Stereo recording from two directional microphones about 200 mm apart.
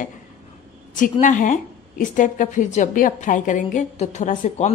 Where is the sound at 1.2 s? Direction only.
40° left (ahead or behind).